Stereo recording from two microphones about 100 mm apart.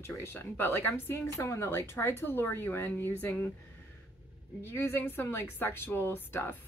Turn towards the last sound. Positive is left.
turn(degrees=20)  # may be behind; listen again after turning